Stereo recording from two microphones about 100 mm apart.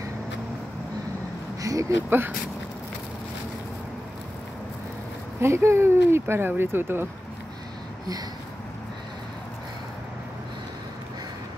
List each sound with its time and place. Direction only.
1.6 s a sound: 35° right (ahead or behind)
2.0 s speech: 20° right (ahead or behind)
5.4 s speech: 25° right (ahead or behind)